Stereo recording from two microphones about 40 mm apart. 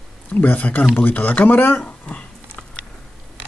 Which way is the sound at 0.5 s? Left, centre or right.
Left.